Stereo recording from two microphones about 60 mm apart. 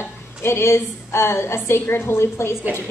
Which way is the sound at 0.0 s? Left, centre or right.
Left.